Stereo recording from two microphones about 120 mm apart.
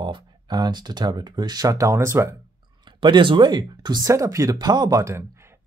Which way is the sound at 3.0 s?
45° right (ahead or behind).